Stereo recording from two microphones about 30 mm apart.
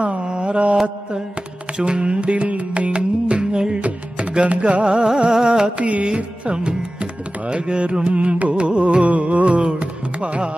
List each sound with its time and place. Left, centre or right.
0.2 s a sound: right
1.9 s music: right
4.5 s music: right
4.8 s music: right
5.8 s music: right
6.1 s music: right